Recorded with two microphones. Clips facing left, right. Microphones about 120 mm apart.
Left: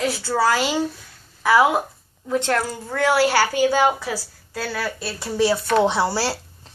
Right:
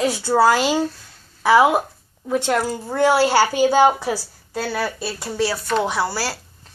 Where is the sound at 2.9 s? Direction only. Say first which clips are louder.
Right 2 dB; 25° right (ahead or behind).